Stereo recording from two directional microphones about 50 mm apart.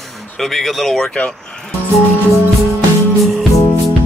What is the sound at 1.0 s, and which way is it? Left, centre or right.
Speech, centre.